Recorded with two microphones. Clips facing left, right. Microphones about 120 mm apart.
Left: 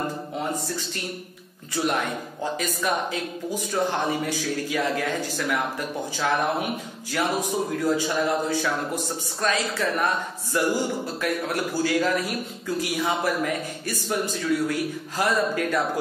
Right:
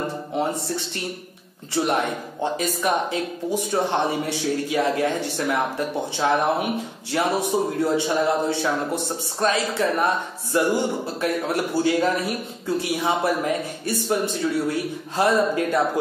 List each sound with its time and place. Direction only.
2.4 s speech: 25° right (ahead or behind)